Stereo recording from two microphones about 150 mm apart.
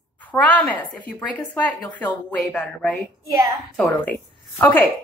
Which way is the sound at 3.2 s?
20° right (ahead or behind).